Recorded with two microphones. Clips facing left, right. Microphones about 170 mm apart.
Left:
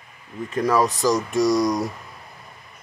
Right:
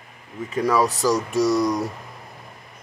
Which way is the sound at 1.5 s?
15° left (ahead or behind).